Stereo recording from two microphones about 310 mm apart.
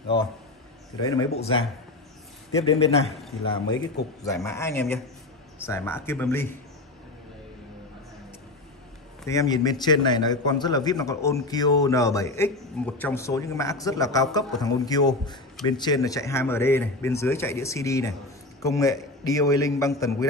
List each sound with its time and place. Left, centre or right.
1.0 s a man's voice: centre
2.6 s a man's voice: centre
3.7 s a man's voice: left
4.2 s a man's voice: centre
9.2 s a man's voice: centre